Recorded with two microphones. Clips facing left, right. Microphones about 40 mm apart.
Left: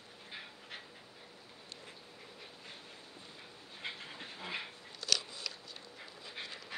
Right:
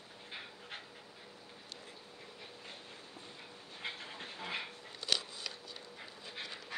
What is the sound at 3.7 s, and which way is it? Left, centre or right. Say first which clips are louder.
Dog: right 1 dB; centre.